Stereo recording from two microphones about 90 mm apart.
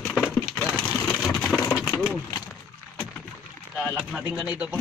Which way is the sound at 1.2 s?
Centre (ahead or behind).